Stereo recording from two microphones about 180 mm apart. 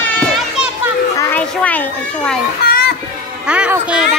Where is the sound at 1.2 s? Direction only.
10° left (ahead or behind).